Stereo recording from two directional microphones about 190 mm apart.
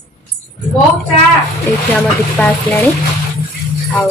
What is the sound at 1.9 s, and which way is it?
Speech, 10° left (ahead or behind).